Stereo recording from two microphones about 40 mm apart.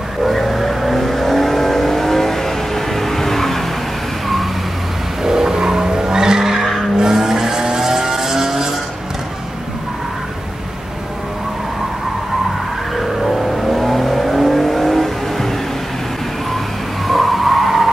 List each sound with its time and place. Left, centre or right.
0.2 s vehicle: centre
5.2 s vehicle: centre
12.9 s vehicle: centre
17.1 s skidding: centre